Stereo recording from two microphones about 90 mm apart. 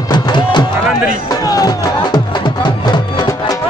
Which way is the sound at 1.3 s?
45° left (ahead or behind).